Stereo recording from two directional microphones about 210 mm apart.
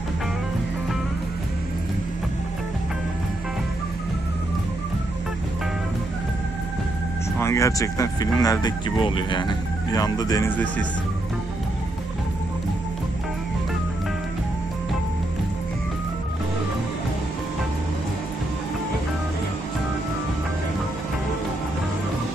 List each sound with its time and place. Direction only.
7.3 s speech: 15° left (ahead or behind)